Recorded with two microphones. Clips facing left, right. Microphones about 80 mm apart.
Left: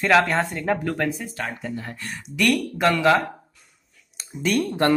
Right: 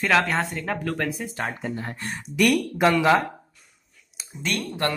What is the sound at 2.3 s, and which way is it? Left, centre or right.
Speech, centre.